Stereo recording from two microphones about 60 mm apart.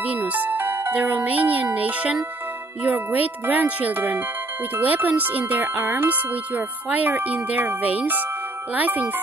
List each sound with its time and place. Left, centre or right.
0.0 s music: right
0.9 s speech: right